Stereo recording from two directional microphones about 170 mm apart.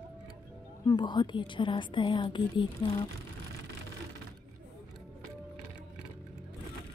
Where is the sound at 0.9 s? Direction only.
30° left (ahead or behind).